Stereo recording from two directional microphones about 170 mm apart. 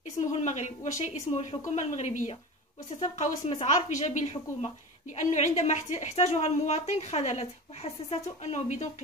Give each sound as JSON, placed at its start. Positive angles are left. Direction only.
{"t": 0.3, "sound": "a woman's voice", "side_deg": 45}